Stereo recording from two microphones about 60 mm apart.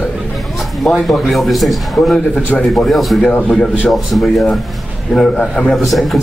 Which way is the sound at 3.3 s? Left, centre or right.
Centre.